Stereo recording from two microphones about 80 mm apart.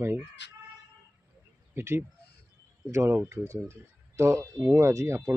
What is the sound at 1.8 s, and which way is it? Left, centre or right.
Speech, right.